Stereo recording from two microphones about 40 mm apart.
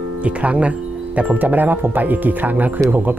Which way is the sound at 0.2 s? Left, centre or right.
Right.